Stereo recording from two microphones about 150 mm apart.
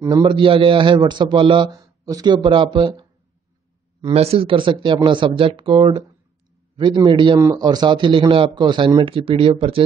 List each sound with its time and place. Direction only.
0.0 s a man's voice: 30° right (ahead or behind)
4.1 s a man's voice: 40° right (ahead or behind)
7.3 s a man's voice: 20° right (ahead or behind); by 9.8 s 40° right (ahead or behind)